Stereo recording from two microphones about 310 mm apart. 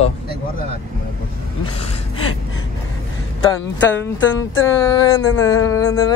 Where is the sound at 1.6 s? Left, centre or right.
Centre.